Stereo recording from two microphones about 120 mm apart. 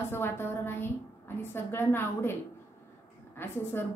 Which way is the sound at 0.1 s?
20° left (ahead or behind).